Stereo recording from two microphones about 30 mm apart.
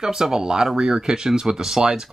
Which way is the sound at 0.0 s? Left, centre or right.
Centre.